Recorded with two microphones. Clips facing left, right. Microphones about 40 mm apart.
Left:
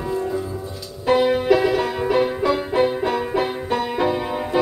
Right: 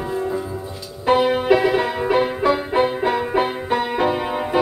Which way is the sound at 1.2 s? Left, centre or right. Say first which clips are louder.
Even; right.